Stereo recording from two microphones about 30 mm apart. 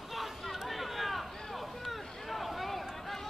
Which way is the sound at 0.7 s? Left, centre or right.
Centre.